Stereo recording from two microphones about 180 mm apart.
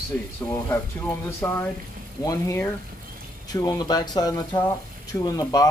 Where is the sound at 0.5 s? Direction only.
15° left (ahead or behind).